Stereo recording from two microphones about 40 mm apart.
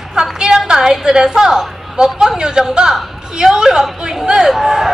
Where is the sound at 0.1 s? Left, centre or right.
Centre.